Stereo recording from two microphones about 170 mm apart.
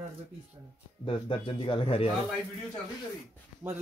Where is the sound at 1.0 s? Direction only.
30° left (ahead or behind).